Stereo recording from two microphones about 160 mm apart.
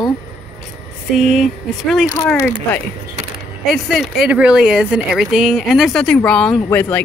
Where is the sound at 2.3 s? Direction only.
15° left (ahead or behind).